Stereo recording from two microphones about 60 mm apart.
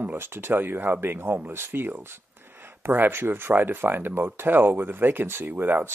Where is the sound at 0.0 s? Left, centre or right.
Right.